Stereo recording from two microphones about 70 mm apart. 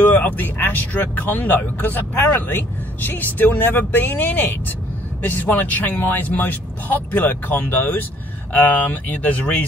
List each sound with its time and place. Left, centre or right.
0.0 s speech: left